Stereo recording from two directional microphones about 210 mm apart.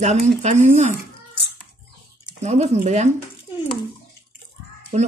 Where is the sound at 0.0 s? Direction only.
35° right (ahead or behind).